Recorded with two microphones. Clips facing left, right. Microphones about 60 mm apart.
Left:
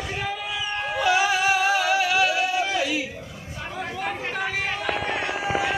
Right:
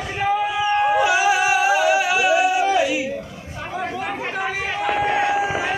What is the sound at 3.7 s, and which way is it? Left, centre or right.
Chatter, centre.